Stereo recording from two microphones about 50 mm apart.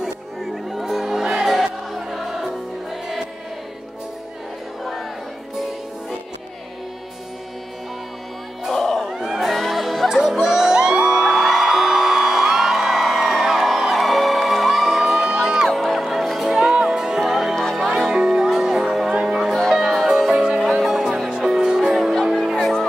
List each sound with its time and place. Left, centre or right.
0.0 s music: centre
8.7 s crowd: centre
9.0 s crowd: centre
10.0 s music: centre
15.7 s music: centre
16.5 s music: centre
22.3 s music: centre